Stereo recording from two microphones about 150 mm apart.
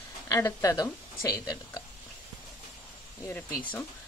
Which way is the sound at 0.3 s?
20° left (ahead or behind).